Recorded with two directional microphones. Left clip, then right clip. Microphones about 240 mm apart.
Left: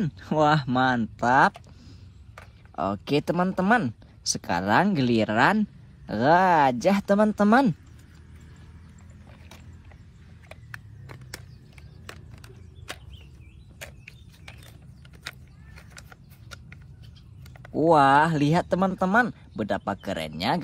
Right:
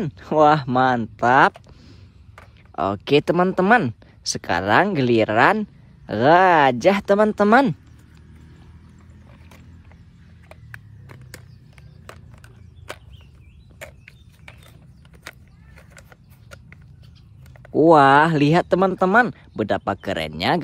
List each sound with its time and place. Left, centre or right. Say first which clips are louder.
0.0 s speech: right 7 dB; right
2.8 s speech: right 7 dB; right
10.5 s vehicle: right 1 dB; centre
15.7 s a sound: right 1 dB; centre
17.9 s speech: right 4 dB; right